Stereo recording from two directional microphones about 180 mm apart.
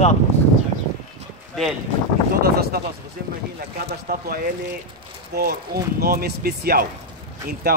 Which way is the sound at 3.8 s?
55° right (ahead or behind).